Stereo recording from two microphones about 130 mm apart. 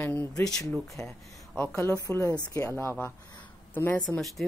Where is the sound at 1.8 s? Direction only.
20° left (ahead or behind).